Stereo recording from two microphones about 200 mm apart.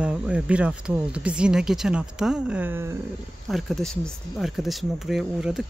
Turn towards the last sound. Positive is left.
turn(degrees=0)  # may be behind; listen again after turning